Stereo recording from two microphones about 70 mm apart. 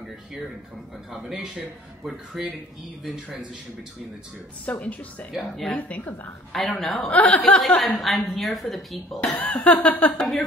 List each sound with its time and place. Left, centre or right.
1.1 s speech: centre
4.6 s speech: left
5.3 s speech: centre
5.8 s speech: left
6.5 s speech: centre
7.1 s speech: left
7.6 s speech: centre
9.6 s a sound: centre
10.1 s speech: centre